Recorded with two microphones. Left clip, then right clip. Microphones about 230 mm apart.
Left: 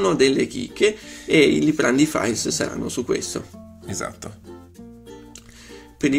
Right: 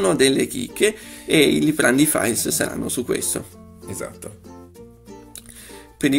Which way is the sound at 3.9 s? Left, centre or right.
Left.